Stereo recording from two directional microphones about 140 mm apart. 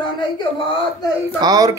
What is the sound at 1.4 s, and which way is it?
Speech, 25° right (ahead or behind).